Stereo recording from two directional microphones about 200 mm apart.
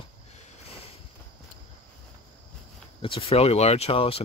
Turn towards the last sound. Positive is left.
turn(degrees=30)  # may be behind; listen again after turning